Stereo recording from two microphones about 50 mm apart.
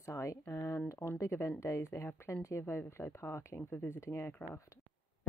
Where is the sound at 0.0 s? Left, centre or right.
Left.